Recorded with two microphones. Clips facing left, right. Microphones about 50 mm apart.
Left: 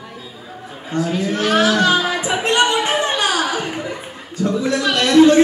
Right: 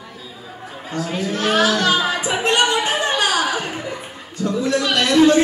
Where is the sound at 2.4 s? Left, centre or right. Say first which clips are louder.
Left 1 dB; left.